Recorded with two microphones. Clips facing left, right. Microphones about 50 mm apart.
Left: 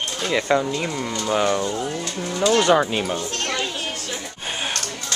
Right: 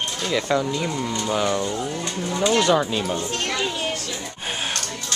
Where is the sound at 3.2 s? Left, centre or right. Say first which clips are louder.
Even; centre.